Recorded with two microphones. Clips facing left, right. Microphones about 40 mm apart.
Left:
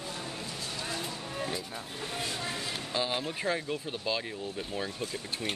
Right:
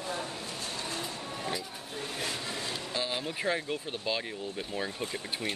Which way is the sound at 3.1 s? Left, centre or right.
Centre.